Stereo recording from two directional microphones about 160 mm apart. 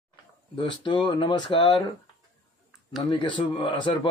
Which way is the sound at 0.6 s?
30° left (ahead or behind).